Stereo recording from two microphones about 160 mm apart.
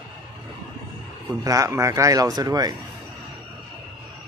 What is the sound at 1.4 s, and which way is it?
Speech, 20° right (ahead or behind).